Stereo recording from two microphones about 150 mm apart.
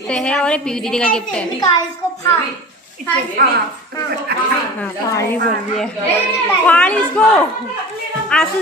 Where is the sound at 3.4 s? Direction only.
70° right (ahead or behind).